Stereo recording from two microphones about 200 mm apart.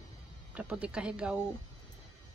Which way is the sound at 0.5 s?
5° right (ahead or behind).